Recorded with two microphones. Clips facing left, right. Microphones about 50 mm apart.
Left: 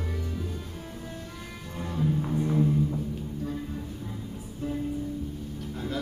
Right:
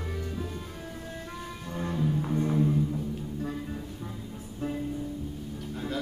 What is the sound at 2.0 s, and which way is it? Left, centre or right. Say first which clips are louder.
Music: left 2 dB; centre.